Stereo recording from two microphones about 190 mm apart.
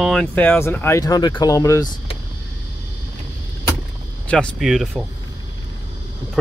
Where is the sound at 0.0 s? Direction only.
Centre (ahead or behind); by 1.9 s 15° left (ahead or behind).